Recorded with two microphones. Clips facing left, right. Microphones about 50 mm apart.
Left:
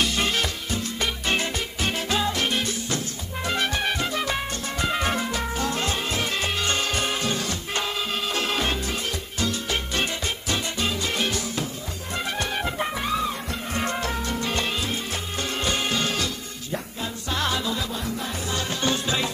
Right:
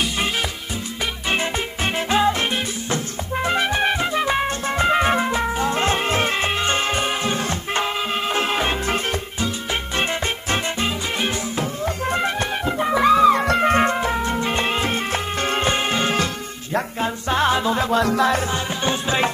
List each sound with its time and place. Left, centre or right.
1.3 s music: right
9.9 s music: right
13.1 s music: right
13.9 s music: right
17.9 s music: right
18.5 s music: right